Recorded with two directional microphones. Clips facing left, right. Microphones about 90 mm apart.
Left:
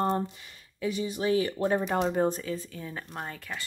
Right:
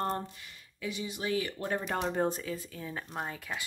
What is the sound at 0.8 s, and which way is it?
Speech, 40° left (ahead or behind).